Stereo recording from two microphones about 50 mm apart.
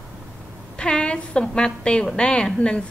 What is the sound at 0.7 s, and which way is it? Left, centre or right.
Child singing, centre.